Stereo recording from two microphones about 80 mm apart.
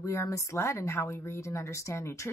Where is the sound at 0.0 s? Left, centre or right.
Left.